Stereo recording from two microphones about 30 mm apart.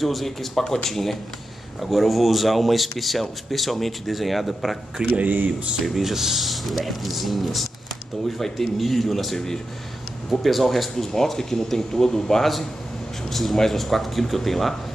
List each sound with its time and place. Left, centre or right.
0.0 s speech: centre
1.8 s speech: centre
5.2 s speech: right
5.8 s speech: centre
8.7 s speech: centre
13.3 s speech: centre